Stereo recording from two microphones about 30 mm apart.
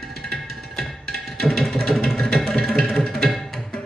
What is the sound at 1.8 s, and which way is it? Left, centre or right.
Music, centre.